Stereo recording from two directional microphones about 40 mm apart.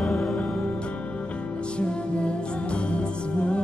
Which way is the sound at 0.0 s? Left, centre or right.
Centre.